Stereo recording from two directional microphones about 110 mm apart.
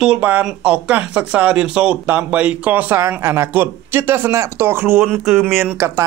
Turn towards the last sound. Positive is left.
turn(degrees=-20)  # may be behind; listen again after turning